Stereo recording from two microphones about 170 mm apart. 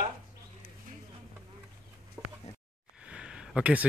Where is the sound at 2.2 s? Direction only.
15° right (ahead or behind).